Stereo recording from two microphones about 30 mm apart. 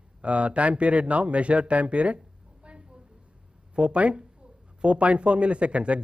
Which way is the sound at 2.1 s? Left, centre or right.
Right.